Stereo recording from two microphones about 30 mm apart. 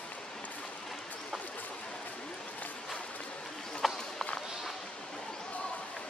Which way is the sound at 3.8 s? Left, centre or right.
Centre.